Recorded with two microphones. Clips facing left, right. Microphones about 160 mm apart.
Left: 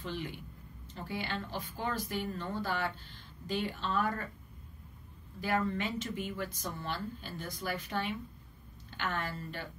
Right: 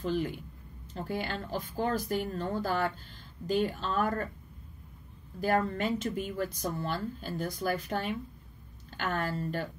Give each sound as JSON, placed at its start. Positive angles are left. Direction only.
{"t": 0.0, "sound": "a woman's voice", "side_deg": -40}
{"t": 5.4, "sound": "a woman's voice", "side_deg": -40}